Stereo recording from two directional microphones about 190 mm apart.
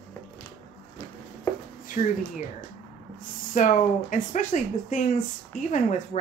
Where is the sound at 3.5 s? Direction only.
40° left (ahead or behind).